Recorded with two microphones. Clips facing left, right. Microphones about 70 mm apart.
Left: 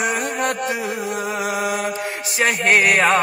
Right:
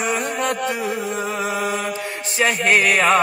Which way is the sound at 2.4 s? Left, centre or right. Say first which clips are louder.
Even; left.